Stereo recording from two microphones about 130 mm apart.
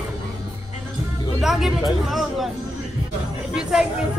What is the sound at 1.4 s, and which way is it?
Speech, centre (ahead or behind).